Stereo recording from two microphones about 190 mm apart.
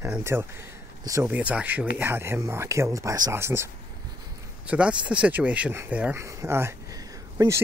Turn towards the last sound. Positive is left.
turn(degrees=-15)  # may be behind; listen again after turning